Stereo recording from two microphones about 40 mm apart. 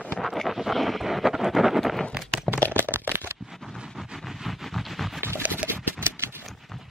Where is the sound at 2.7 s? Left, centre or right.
Right.